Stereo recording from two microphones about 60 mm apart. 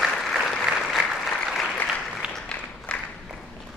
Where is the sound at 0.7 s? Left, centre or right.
Centre.